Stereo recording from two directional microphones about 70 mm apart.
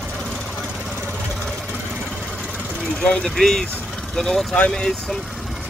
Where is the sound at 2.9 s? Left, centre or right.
Centre.